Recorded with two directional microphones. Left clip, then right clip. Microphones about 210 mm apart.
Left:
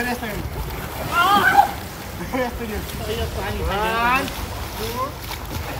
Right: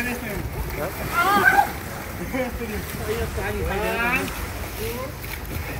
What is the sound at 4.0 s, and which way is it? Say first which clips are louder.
Speech: left 5 dB; 30° left (ahead or behind).